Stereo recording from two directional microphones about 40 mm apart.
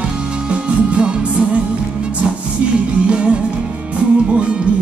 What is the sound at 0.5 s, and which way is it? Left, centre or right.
Music, right.